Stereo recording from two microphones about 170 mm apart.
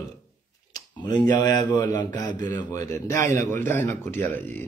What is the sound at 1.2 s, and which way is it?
Speech, 25° left (ahead or behind).